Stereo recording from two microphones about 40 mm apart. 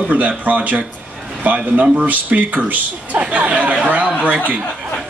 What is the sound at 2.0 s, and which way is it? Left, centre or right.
Speech, right.